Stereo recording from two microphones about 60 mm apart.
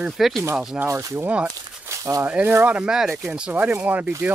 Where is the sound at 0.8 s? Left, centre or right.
Right.